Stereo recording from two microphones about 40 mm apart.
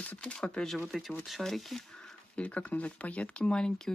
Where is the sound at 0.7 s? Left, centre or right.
Centre.